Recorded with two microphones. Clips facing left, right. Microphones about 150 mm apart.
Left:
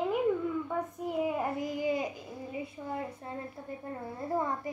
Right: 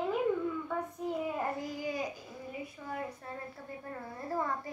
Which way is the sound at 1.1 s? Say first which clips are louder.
Left 3 dB; 15° left (ahead or behind).